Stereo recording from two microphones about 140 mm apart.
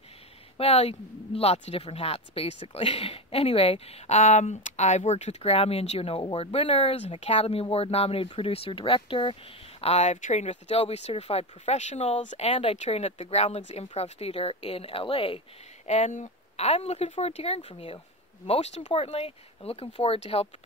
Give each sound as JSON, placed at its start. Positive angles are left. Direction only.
{"t": 0.6, "sound": "speech", "side_deg": 45}
{"t": 15.9, "sound": "speech", "side_deg": 60}